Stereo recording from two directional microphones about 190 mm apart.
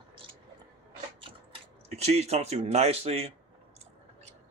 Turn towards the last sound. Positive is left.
turn(degrees=-30)  # may be behind; listen again after turning